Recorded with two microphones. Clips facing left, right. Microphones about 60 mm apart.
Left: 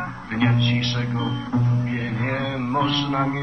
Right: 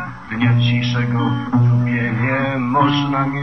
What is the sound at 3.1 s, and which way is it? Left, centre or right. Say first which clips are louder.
Speech: right 4 dB; centre.